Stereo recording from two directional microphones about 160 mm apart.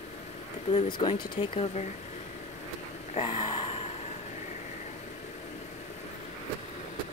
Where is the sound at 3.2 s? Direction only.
30° left (ahead or behind).